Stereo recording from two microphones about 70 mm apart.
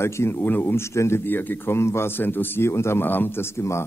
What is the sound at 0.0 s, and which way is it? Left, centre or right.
Speech, left.